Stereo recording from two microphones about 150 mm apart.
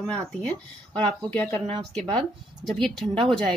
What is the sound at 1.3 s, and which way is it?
Speech, 5° left (ahead or behind).